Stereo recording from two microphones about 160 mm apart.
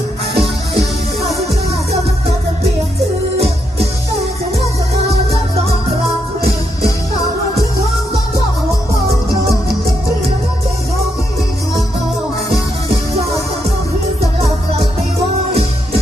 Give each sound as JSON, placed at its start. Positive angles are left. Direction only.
{"t": 0.4, "sound": "music", "side_deg": -40}